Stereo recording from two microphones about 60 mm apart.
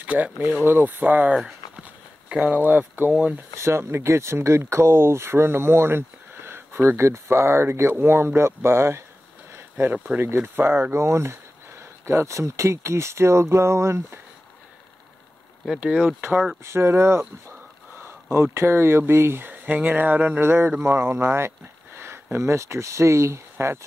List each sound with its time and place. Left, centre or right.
0.0 s speech: right
1.3 s a sound: centre
2.3 s speech: right
3.5 s speech: right
9.5 s a sound: right
10.2 s speech: right
15.8 s speech: centre
16.6 s speech: right
19.6 s speech: right
20.0 s a sound: right
20.8 s speech: right